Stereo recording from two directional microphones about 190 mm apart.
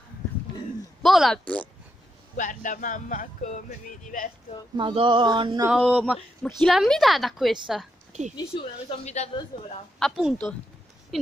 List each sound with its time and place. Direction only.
1.0 s a woman's voice: centre (ahead or behind)
2.3 s speech: 45° left (ahead or behind)
4.7 s a sound: 25° right (ahead or behind)
5.9 s a woman's voice: 5° right (ahead or behind)
8.1 s speech: 35° right (ahead or behind)
8.5 s speech: 35° left (ahead or behind)
9.9 s a woman's voice: centre (ahead or behind)